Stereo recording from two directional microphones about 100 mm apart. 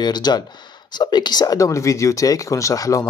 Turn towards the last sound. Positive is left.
turn(degrees=35)  # may be behind; listen again after turning